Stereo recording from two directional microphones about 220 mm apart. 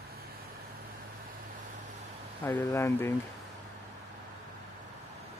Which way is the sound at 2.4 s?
10° left (ahead or behind).